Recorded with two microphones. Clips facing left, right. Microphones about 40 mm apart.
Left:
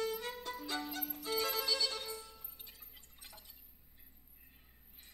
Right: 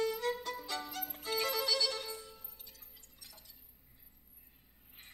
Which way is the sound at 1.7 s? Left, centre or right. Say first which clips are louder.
Right 3 dB; left.